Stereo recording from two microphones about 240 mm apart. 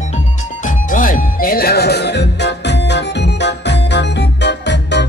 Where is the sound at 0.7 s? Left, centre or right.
Left.